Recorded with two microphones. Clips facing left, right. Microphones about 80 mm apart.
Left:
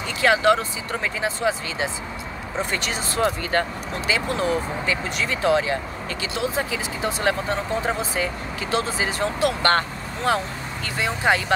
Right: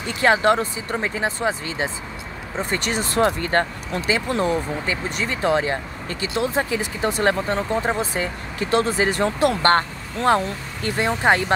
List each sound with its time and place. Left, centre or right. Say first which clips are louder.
0.0 s speech: right 1 dB; right
4.1 s speech: right 2 dB; right